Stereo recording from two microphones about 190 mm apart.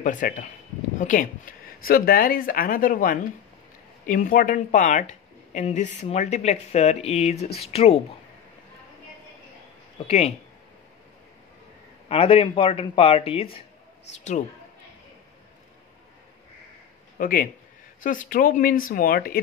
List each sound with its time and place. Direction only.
0.0 s speech: 45° left (ahead or behind)
9.9 s speech: 30° left (ahead or behind)
12.1 s speech: 30° left (ahead or behind)
17.2 s speech: 45° left (ahead or behind)